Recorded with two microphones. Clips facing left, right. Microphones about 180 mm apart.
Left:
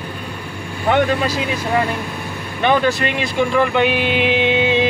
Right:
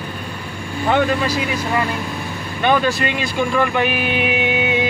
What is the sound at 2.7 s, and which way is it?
Speech, 20° left (ahead or behind).